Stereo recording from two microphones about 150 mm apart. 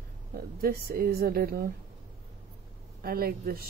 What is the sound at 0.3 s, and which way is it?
A woman's voice, 80° right.